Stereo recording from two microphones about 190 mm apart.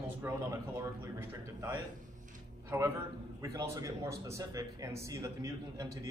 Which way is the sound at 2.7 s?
15° right (ahead or behind).